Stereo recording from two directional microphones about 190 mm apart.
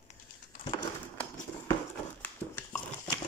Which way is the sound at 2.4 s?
15° left (ahead or behind).